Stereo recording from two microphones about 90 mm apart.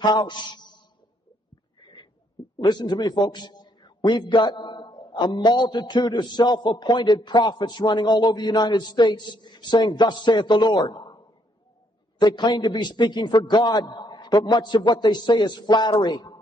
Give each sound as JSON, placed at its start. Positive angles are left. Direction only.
{"t": 0.0, "sound": "a man's voice", "side_deg": 55}
{"t": 2.6, "sound": "a man's voice", "side_deg": 50}
{"t": 12.2, "sound": "a man's voice", "side_deg": 55}